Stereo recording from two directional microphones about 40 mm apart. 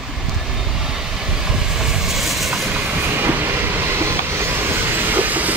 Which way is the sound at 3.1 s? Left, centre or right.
Right.